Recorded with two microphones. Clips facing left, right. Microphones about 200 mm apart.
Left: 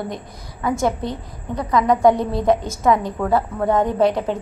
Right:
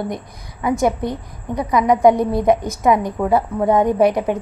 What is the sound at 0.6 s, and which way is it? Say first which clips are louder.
A woman's voice: right 3 dB; 20° right (ahead or behind).